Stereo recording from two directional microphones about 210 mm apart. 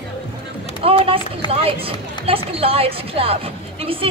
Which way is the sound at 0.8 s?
25° right (ahead or behind).